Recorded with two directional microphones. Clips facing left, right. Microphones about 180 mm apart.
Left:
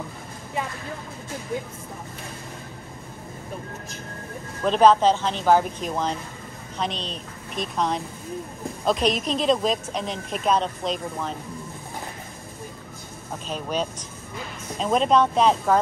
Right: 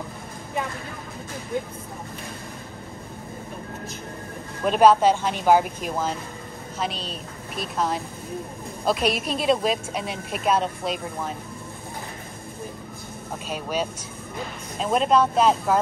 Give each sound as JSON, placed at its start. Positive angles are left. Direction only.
{"t": 4.6, "sound": "a woman's voice", "side_deg": -10}
{"t": 13.5, "sound": "a woman's voice", "side_deg": -10}